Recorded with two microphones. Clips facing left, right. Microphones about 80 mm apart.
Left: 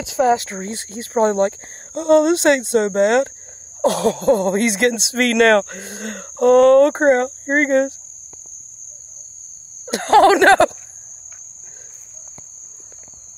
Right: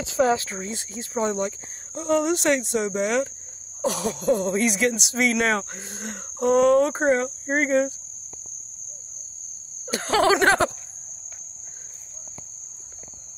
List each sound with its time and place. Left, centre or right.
0.7 s speech: left
2.0 s speech: left
9.8 s speech: left